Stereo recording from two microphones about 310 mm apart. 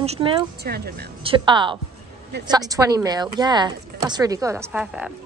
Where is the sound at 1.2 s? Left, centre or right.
Centre.